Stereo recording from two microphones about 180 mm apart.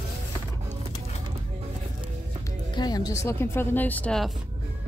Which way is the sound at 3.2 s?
15° left (ahead or behind).